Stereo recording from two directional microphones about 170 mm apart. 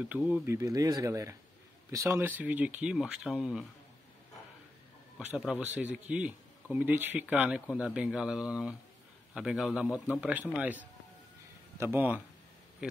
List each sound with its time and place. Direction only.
0.1 s speech: 10° right (ahead or behind)
5.3 s speech: 5° right (ahead or behind)